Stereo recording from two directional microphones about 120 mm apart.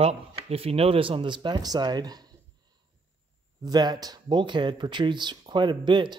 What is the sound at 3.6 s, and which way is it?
Speech, 35° right (ahead or behind).